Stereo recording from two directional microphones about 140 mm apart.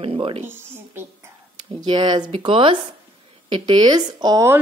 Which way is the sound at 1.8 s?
35° right (ahead or behind).